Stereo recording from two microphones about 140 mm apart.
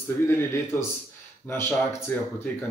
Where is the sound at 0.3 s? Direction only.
20° left (ahead or behind).